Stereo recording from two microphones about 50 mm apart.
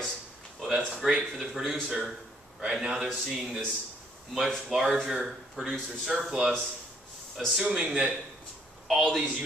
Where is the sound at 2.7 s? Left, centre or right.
Centre.